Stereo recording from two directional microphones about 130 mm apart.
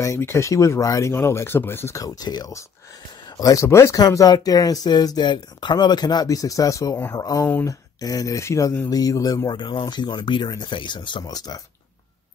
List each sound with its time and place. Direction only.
0.0 s speech: 20° left (ahead or behind)
7.4 s speech: 15° left (ahead or behind)
8.0 s speech: 30° left (ahead or behind)